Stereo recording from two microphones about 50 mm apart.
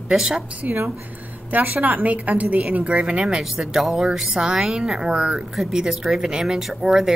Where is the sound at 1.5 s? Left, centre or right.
Right.